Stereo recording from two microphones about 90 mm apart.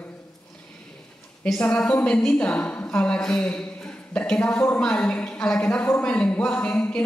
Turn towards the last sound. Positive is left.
turn(degrees=10)  # may be behind; listen again after turning